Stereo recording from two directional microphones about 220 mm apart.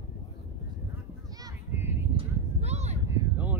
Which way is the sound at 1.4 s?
10° right (ahead or behind).